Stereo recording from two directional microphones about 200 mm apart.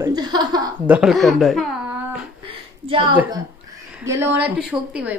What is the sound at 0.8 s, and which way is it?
Speech, 5° right (ahead or behind).